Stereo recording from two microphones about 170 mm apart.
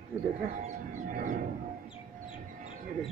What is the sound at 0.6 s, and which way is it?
Bird, 50° right (ahead or behind).